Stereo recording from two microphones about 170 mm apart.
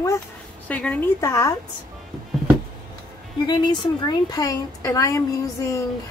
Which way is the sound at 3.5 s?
25° left (ahead or behind).